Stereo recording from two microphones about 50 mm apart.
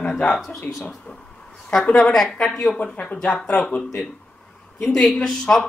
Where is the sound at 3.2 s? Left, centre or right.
Left.